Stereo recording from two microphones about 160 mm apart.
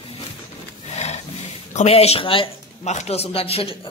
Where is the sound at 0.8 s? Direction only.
45° left (ahead or behind).